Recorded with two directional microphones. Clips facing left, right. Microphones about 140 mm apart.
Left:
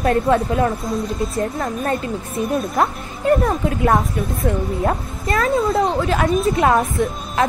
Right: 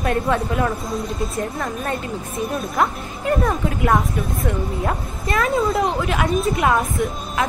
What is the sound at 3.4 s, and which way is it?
Speech, 30° left (ahead or behind).